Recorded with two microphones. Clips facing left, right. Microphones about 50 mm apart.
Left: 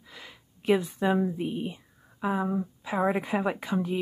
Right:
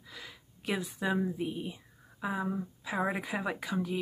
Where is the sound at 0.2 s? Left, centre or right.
Left.